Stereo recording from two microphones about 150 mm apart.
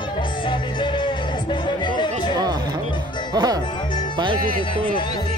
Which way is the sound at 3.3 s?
25° right (ahead or behind).